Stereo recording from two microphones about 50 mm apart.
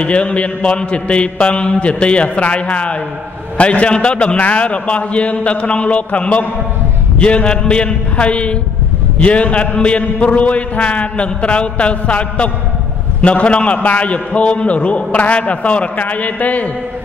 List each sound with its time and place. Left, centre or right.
0.0 s a man's voice: left